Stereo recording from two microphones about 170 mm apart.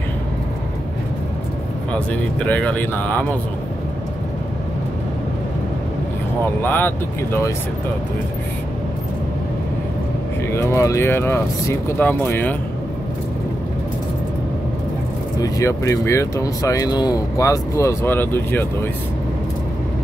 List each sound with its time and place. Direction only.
2.0 s speech: 5° left (ahead or behind)
6.6 s speech: 10° left (ahead or behind)
10.5 s speech: 15° left (ahead or behind)
15.4 s speech: 20° left (ahead or behind)